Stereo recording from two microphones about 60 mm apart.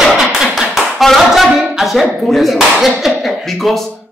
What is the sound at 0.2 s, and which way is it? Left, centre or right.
A man's voice, centre.